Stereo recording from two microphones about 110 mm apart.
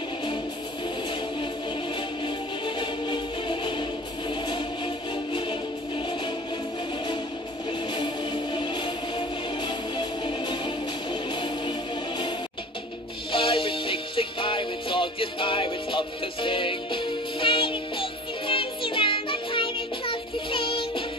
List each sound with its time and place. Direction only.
2.2 s music: 45° left (ahead or behind)
7.9 s music: 45° left (ahead or behind)
13.3 s music: 50° left (ahead or behind)